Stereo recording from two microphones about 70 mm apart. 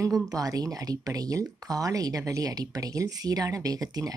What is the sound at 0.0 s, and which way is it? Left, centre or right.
Speech, right.